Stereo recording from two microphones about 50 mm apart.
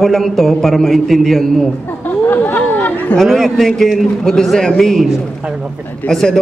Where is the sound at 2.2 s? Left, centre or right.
Left.